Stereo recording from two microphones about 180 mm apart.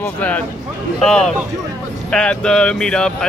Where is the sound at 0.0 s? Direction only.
10° left (ahead or behind).